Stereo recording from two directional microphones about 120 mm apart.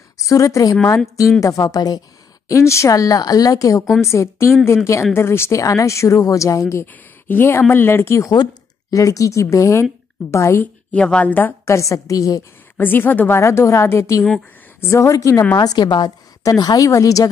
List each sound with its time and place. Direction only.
0.2 s a woman's voice: 25° left (ahead or behind)
3.8 s speech: centre (ahead or behind)
4.1 s speech: 25° left (ahead or behind)
12.7 s a woman's voice: 15° left (ahead or behind)